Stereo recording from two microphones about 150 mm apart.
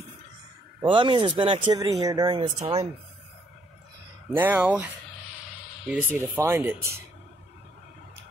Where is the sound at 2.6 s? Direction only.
45° right (ahead or behind).